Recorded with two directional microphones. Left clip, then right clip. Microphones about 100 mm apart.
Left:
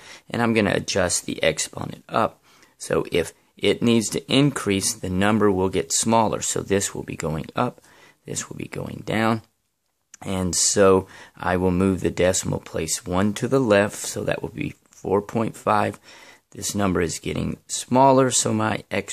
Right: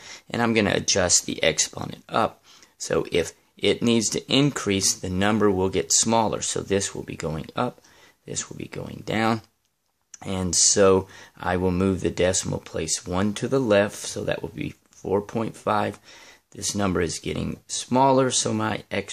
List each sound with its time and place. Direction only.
0.0 s speech: 20° left (ahead or behind)
8.3 s speech: 30° left (ahead or behind)